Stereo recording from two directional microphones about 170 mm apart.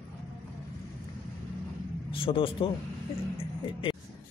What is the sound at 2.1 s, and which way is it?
Speech, 30° left (ahead or behind).